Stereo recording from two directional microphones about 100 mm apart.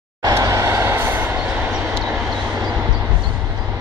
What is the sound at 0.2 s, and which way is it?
Vehicle, 30° right (ahead or behind).